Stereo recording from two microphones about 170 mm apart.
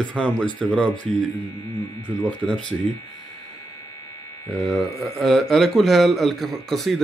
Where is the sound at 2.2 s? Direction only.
5° left (ahead or behind).